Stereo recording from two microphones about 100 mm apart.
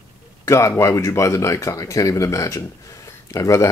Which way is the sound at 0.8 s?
30° left (ahead or behind).